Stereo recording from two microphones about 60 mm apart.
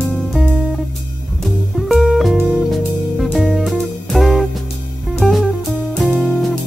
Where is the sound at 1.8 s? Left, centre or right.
Centre.